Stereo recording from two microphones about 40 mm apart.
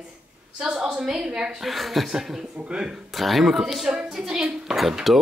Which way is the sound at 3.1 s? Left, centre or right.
Centre.